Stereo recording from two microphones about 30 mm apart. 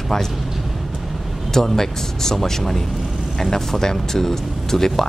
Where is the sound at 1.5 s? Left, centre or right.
Centre.